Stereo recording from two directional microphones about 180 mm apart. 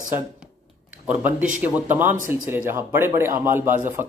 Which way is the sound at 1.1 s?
10° right (ahead or behind).